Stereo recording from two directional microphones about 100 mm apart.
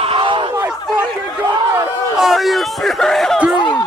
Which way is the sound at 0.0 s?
60° right (ahead or behind).